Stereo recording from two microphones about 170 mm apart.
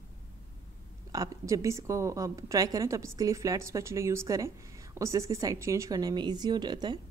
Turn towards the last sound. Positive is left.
turn(degrees=-25)  # may be behind; listen again after turning